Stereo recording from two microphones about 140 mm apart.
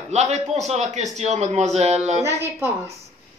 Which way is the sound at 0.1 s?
50° right (ahead or behind).